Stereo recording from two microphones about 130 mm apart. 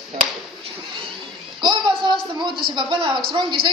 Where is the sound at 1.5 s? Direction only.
35° right (ahead or behind).